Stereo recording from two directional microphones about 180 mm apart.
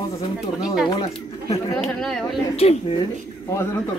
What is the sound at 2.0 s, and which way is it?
Speech, 5° left (ahead or behind).